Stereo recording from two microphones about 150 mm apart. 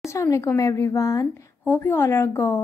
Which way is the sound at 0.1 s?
20° left (ahead or behind).